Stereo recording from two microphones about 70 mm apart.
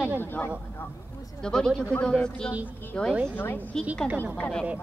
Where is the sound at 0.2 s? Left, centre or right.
Left.